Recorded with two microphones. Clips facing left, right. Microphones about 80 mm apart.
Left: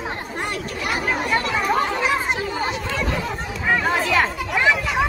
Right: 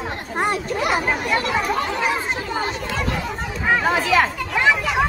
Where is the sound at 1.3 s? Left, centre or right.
Left.